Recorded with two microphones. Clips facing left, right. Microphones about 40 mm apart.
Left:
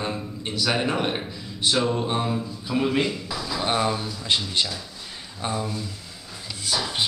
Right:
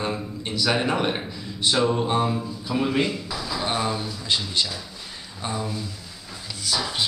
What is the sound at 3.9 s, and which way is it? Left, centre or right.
Speech, centre.